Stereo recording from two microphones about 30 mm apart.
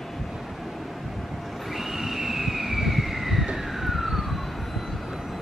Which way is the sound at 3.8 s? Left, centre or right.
Centre.